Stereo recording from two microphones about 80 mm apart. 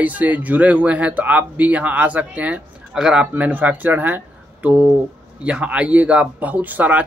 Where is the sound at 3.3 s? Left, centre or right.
Right.